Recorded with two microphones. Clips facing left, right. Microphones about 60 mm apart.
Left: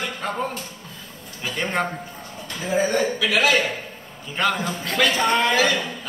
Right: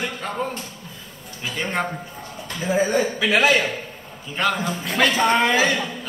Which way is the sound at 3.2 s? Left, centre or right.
Right.